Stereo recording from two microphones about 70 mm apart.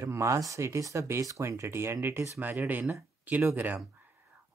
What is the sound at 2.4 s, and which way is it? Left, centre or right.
Speech, right.